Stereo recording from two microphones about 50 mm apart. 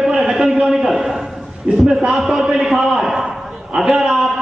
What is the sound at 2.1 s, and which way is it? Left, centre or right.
Speech, centre.